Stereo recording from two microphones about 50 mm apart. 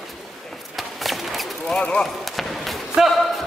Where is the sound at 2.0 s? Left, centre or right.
Centre.